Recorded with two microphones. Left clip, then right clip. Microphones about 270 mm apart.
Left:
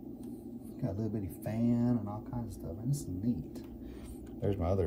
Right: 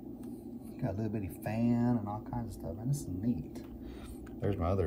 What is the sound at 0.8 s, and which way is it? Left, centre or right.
Speech, right.